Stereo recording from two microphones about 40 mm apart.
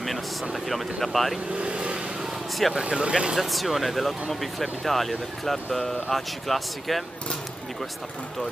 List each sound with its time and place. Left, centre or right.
0.7 s speech: centre
1.5 s speech: right
3.3 s speech: centre